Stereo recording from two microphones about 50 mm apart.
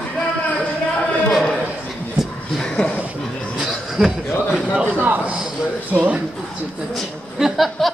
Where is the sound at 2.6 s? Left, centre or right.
Centre.